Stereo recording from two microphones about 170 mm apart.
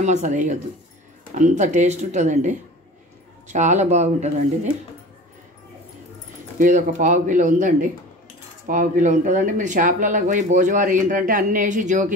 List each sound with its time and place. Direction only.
0.0 s speech: 45° right (ahead or behind)
6.6 s speech: 50° right (ahead or behind)